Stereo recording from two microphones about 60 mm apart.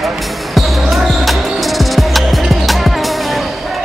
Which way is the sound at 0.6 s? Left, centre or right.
Centre.